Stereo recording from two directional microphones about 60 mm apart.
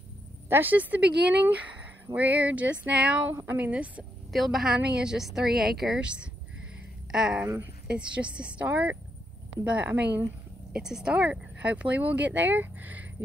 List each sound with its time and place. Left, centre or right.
0.5 s speech: right
3.4 s a woman's voice: right
4.3 s a woman's voice: centre
5.9 s speech: centre
10.7 s a woman's voice: centre
11.1 s speech: right